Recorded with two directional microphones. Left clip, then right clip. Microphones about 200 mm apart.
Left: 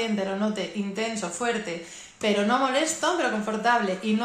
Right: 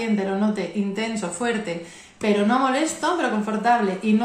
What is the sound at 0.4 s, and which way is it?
A woman's voice, 5° left (ahead or behind).